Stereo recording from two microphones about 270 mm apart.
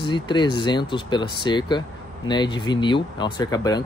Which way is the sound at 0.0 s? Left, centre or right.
Centre.